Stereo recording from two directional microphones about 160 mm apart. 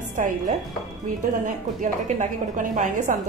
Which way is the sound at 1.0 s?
50° right (ahead or behind).